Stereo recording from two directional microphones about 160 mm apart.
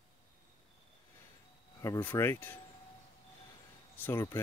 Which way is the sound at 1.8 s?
20° left (ahead or behind).